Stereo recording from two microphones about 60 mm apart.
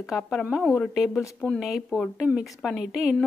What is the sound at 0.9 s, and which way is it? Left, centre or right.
A woman's voice, centre.